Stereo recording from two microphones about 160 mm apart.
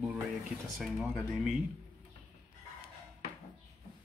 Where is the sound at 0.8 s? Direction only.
5° right (ahead or behind).